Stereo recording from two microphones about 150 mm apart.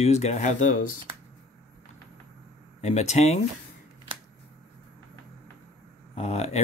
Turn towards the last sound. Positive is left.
turn(degrees=45)  # may be behind; listen again after turning